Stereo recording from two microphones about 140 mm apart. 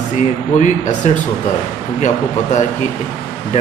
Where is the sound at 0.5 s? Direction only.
60° left (ahead or behind).